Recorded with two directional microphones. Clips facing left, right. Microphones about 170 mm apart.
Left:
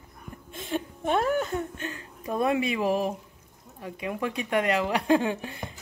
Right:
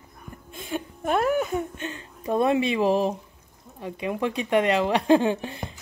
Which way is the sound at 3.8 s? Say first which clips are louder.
Right 4 dB; 25° right (ahead or behind).